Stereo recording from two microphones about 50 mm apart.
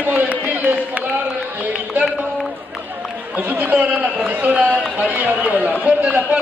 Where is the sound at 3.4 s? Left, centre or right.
Right.